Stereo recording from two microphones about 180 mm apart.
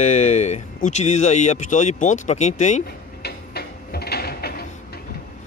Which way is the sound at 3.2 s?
60° left (ahead or behind).